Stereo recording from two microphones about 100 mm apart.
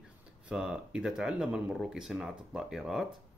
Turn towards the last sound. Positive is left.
turn(degrees=-5)  # may be behind; listen again after turning